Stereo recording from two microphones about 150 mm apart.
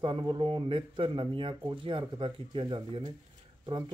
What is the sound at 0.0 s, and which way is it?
Speech, 30° right (ahead or behind).